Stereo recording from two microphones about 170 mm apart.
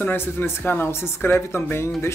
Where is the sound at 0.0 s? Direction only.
10° left (ahead or behind).